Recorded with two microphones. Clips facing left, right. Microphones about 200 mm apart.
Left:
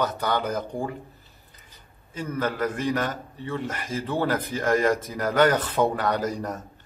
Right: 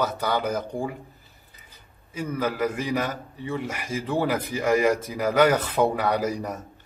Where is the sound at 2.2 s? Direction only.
10° right (ahead or behind).